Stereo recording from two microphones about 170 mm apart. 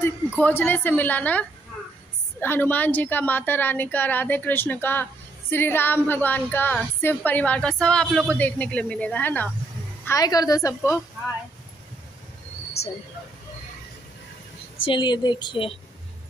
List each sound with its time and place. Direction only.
0.0 s a woman's voice: 10° left (ahead or behind)
2.4 s a woman's voice: 10° left (ahead or behind)
14.9 s a woman's voice: 25° left (ahead or behind)